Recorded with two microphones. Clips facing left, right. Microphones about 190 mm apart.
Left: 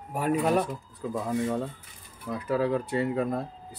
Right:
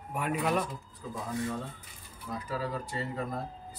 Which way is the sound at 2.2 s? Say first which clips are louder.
Left 8 dB; 60° left (ahead or behind).